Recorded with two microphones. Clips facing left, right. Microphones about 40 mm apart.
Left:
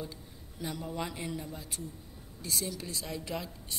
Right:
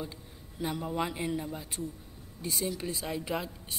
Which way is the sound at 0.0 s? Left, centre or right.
Right.